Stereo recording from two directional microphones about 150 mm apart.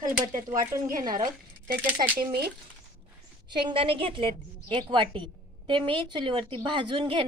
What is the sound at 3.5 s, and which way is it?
A woman's voice, 35° right (ahead or behind).